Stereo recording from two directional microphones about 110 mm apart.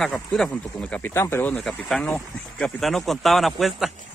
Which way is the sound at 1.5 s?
10° left (ahead or behind).